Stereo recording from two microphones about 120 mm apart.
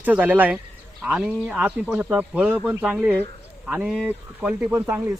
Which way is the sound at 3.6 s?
10° right (ahead or behind).